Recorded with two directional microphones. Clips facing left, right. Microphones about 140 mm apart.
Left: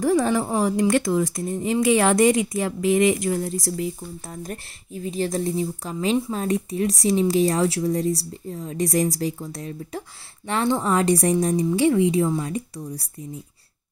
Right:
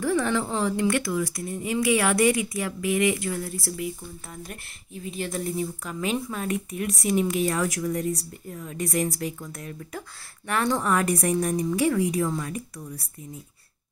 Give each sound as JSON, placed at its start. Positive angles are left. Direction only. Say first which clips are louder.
{"t": 0.0, "sound": "speech", "louder": "left 4 dB", "side_deg": 15}
{"t": 3.7, "sound": "speech", "louder": "left 4 dB", "side_deg": 35}